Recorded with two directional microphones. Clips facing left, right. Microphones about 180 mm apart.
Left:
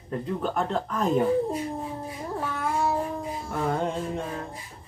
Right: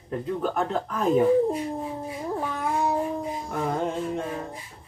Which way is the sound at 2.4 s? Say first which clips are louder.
Even; 15° right (ahead or behind).